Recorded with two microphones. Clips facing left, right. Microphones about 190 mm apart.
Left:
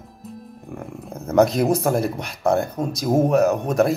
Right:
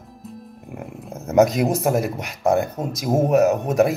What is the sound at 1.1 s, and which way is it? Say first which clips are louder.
Speech: right 1 dB; centre (ahead or behind).